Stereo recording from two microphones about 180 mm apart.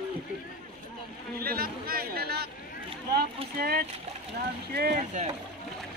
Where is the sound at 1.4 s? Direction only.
55° right (ahead or behind).